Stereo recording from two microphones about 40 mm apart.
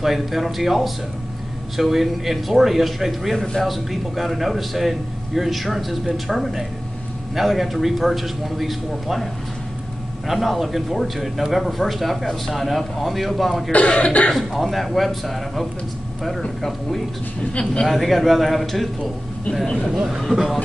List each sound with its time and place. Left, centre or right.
0.0 s speech: centre
13.7 s speech: left
14.6 s speech: centre
17.4 s speech: left
17.8 s speech: centre
19.6 s speech: centre
19.9 s speech: centre